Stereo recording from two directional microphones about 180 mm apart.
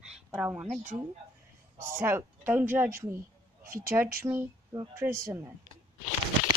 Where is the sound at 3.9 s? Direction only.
15° right (ahead or behind).